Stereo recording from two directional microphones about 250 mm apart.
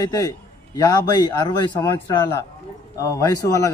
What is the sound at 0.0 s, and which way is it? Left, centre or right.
A man's voice, centre.